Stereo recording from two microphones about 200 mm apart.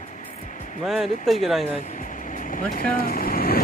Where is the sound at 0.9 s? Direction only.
Centre (ahead or behind).